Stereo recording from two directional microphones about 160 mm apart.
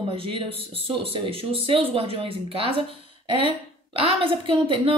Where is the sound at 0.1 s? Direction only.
35° right (ahead or behind).